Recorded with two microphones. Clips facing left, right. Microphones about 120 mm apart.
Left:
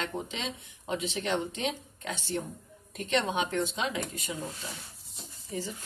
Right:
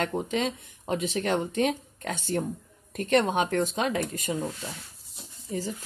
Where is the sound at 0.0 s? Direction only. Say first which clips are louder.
Right 7 dB; 50° right (ahead or behind).